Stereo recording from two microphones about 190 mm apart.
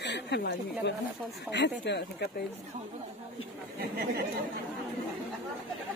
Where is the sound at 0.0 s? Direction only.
65° left (ahead or behind).